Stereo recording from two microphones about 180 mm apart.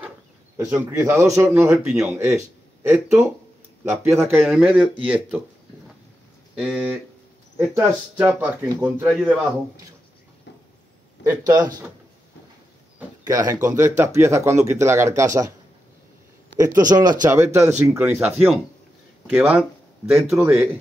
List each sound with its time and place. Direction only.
0.7 s speech: 15° right (ahead or behind)
4.2 s speech: centre (ahead or behind)
6.5 s speech: 5° right (ahead or behind)
7.5 s speech: 15° right (ahead or behind)
11.2 s a man's voice: 20° right (ahead or behind)
13.2 s speech: 20° right (ahead or behind)
16.5 s a man's voice: 20° right (ahead or behind); by 20.3 s centre (ahead or behind)
20.3 s speech: 15° right (ahead or behind)